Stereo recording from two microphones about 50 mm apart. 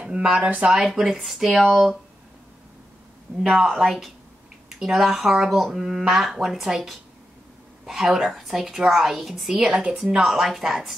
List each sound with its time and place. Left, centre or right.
0.0 s speech: centre
3.4 s speech: centre
10.2 s speech: centre